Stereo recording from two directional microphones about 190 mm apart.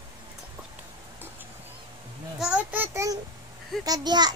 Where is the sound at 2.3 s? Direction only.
5° right (ahead or behind).